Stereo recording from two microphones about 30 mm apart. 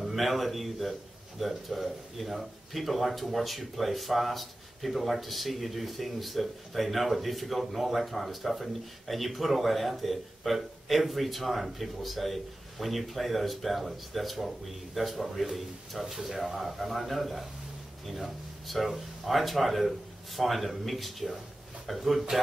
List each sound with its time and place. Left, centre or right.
0.0 s speech: centre